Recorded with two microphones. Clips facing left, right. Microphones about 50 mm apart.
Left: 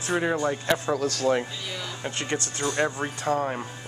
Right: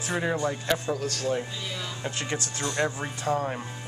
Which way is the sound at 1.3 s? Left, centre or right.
Left.